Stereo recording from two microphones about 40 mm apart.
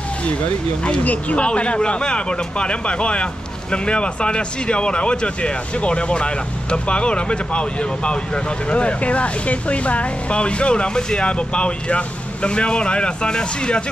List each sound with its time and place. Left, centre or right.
1.0 s speech: left